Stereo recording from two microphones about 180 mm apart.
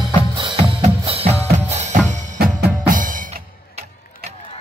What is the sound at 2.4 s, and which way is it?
Drum, 55° right (ahead or behind).